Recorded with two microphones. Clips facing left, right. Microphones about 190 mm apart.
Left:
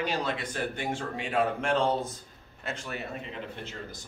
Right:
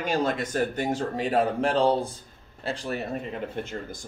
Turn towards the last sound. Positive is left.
turn(degrees=-45)  # may be behind; listen again after turning